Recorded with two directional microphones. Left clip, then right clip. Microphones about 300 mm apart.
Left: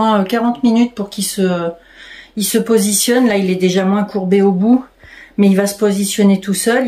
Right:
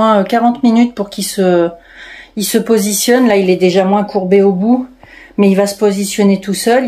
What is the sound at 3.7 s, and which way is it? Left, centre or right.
Speech, left.